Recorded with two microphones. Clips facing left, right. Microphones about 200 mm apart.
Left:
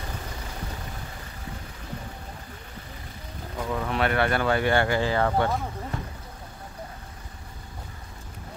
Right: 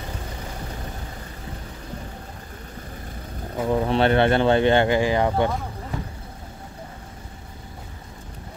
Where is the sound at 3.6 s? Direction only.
30° right (ahead or behind).